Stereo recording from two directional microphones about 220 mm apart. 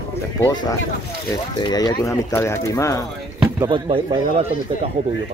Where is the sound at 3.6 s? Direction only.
20° right (ahead or behind).